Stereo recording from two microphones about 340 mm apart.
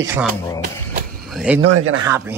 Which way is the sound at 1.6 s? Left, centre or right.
Right.